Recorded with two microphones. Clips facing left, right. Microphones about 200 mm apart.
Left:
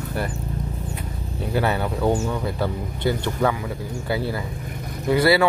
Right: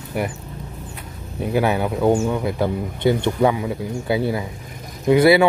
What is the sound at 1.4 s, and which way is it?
A man's voice, 15° right (ahead or behind).